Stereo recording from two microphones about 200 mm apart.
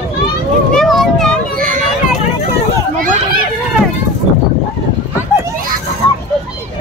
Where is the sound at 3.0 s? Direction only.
45° right (ahead or behind).